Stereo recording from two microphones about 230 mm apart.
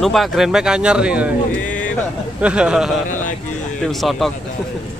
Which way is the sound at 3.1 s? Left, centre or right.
Left.